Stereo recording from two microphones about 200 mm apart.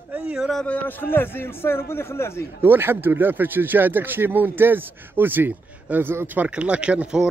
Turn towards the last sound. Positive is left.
turn(degrees=-5)  # may be behind; listen again after turning